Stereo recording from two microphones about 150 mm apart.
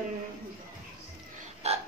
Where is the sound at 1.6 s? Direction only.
45° right (ahead or behind).